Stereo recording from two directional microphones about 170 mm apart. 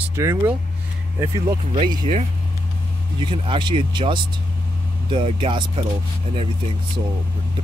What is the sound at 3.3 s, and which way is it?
Speech, 30° right (ahead or behind).